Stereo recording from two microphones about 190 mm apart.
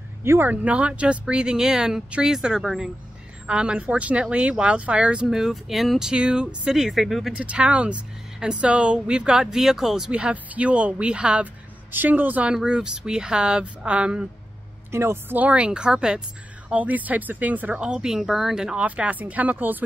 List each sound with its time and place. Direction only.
0.2 s speech: 10° right (ahead or behind)